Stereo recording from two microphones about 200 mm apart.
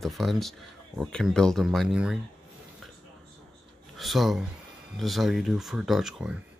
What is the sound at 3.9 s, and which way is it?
Speech, centre (ahead or behind).